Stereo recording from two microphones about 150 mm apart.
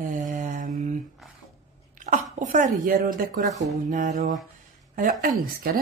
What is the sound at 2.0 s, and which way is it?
Speech, 60° right (ahead or behind).